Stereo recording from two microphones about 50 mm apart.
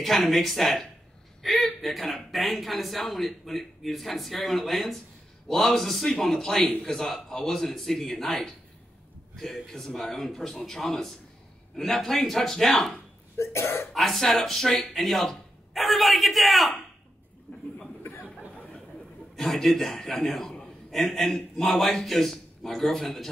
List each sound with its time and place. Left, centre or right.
0.0 s speech: centre
1.4 s whimper: centre
2.3 s speech: centre
13.4 s cough: left
13.9 s speech: centre
17.5 s chuckle: left
18.1 s a sound: left
19.3 s speech: centre